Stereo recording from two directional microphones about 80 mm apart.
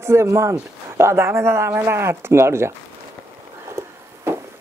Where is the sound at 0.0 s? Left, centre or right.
Right.